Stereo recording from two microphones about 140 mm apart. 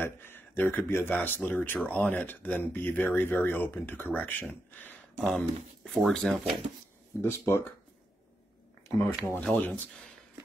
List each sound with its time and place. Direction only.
0.0 s speech: 15° left (ahead or behind)
5.9 s speech: centre (ahead or behind)
7.2 s speech: 15° left (ahead or behind)
8.8 s speech: 15° left (ahead or behind)